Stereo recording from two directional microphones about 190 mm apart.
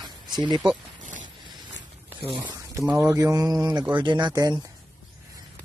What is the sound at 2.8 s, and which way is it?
Speech, 10° right (ahead or behind).